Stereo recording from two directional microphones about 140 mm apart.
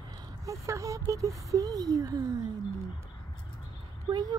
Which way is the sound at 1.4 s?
25° right (ahead or behind).